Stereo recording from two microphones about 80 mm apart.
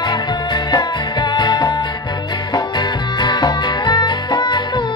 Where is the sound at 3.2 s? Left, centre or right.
Left.